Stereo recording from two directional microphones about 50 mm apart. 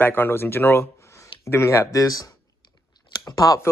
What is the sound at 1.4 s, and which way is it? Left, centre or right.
Speech, left.